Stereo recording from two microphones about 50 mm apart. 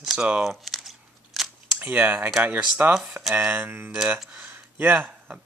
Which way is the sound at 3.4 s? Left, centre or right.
Right.